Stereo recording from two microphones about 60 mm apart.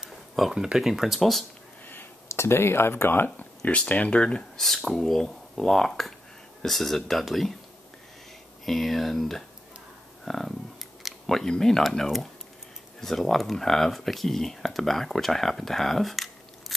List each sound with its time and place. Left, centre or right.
0.0 s a sound: centre
0.7 s speech: centre
2.2 s speech: left
3.3 s a sound: left
3.9 s speech: left; by 7.5 s centre
8.6 s speech: centre